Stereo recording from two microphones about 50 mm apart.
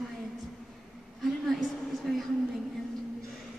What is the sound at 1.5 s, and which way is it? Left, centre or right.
Speech, centre.